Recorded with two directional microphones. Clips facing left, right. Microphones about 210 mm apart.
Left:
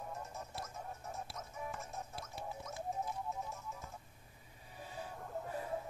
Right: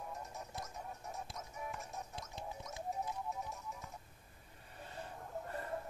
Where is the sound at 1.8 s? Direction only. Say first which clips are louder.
Left 1 dB; centre (ahead or behind).